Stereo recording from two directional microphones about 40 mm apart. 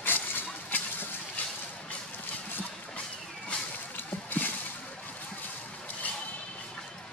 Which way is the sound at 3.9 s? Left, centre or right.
Left.